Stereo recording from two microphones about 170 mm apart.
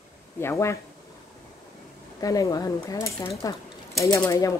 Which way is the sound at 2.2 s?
20° left (ahead or behind).